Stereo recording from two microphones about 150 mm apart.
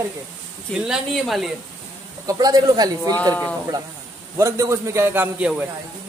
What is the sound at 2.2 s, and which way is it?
Speech, 25° right (ahead or behind).